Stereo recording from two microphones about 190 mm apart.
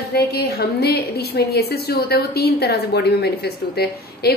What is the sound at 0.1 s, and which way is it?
A woman's voice, 55° left (ahead or behind).